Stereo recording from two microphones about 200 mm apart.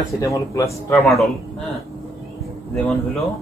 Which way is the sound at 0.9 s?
Centre (ahead or behind).